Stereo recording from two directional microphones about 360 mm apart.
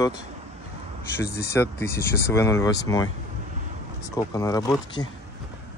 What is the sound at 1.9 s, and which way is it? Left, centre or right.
Speech, left.